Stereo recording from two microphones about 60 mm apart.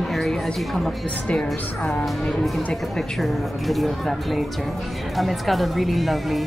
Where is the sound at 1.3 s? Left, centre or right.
Centre.